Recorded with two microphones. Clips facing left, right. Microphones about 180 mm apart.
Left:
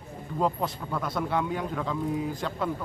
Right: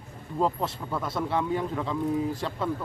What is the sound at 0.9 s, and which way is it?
Speech, centre (ahead or behind).